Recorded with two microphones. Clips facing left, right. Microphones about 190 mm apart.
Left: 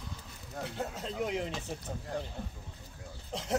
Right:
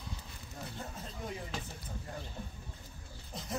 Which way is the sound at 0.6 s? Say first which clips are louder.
Left 7 dB; 80° left.